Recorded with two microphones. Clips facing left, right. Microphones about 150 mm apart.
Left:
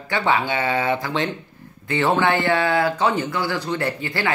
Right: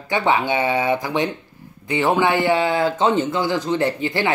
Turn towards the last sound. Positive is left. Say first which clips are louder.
# right 3 dB
turn(degrees=-20)  # may be behind; listen again after turning